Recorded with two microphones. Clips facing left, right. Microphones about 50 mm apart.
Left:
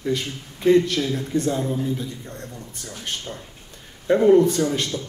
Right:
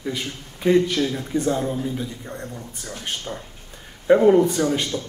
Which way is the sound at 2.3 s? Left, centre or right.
Right.